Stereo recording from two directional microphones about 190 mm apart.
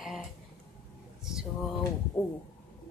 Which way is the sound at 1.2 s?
5° right (ahead or behind).